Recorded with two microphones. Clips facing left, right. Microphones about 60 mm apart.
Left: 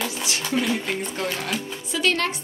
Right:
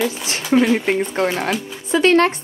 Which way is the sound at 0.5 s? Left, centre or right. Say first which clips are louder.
Right 10 dB; right.